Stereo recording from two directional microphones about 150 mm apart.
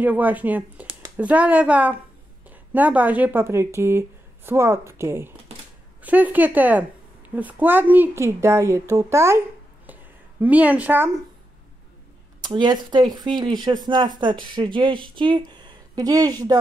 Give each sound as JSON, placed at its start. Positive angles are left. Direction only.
{"t": 0.0, "sound": "a woman's voice", "side_deg": -10}
{"t": 10.4, "sound": "a woman's voice", "side_deg": -10}
{"t": 12.4, "sound": "speech", "side_deg": -30}